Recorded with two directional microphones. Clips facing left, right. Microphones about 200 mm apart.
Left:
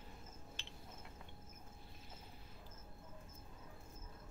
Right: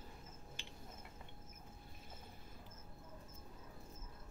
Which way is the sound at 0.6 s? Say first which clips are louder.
Right 2 dB; 10° right (ahead or behind).